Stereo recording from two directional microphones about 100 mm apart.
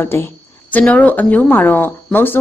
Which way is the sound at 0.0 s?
20° left (ahead or behind).